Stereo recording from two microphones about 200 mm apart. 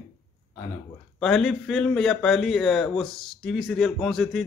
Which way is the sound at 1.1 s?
Centre (ahead or behind).